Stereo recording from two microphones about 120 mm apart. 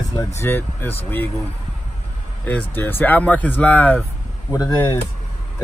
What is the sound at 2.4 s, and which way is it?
Speech, 10° left (ahead or behind).